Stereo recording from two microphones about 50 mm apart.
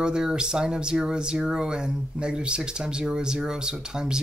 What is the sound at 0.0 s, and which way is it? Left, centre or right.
Speech, centre.